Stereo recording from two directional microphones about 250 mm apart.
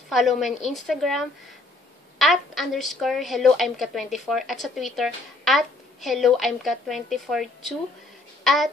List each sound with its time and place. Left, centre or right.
0.1 s a woman's voice: centre